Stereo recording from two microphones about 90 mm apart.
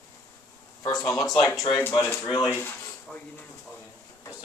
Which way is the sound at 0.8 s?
40° left (ahead or behind).